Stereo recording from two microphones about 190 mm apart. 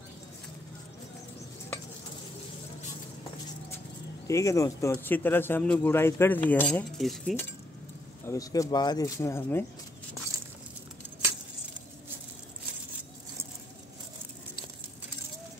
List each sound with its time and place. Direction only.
4.3 s speech: 15° left (ahead or behind)
8.3 s speech: 20° left (ahead or behind)